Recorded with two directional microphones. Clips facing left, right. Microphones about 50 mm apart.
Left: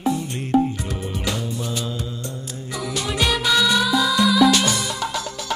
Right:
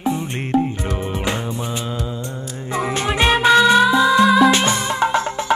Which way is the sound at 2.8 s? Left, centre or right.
Right.